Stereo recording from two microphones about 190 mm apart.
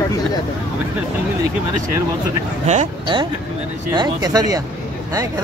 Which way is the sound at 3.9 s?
20° right (ahead or behind).